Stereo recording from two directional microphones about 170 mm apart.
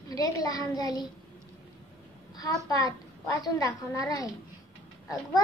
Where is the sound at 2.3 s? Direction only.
20° left (ahead or behind).